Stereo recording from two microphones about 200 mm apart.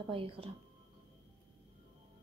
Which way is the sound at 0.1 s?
25° right (ahead or behind).